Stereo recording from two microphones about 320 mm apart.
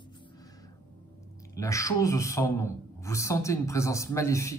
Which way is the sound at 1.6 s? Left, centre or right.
Centre.